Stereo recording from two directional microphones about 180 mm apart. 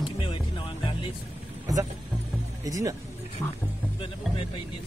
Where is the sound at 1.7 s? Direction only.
20° right (ahead or behind).